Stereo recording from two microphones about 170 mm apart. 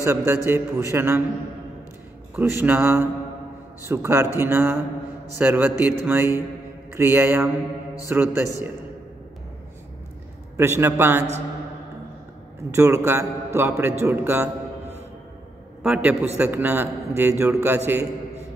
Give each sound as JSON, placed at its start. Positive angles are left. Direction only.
{"t": 0.0, "sound": "a man's voice", "side_deg": -15}
{"t": 2.3, "sound": "a man's voice", "side_deg": -10}
{"t": 10.6, "sound": "a man's voice", "side_deg": -15}
{"t": 12.7, "sound": "a man's voice", "side_deg": -15}
{"t": 15.8, "sound": "a man's voice", "side_deg": -5}